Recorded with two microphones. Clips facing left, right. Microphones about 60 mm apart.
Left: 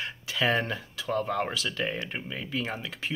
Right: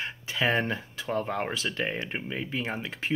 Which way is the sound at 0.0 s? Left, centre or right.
Right.